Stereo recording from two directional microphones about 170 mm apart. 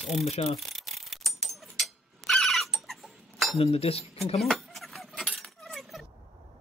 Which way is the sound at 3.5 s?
35° left (ahead or behind).